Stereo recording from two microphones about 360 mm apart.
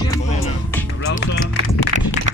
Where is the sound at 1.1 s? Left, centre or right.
Left.